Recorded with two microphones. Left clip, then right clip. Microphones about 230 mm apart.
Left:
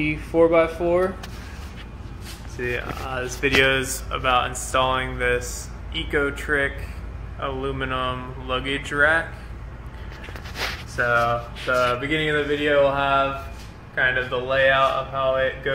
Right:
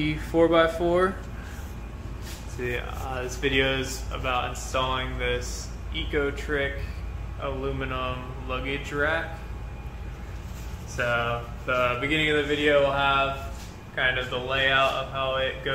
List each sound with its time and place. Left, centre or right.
0.1 s speech: centre
2.6 s speech: centre
3.3 s speech: left
11.0 s speech: left